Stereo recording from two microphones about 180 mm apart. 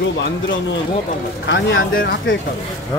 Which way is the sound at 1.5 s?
90° left.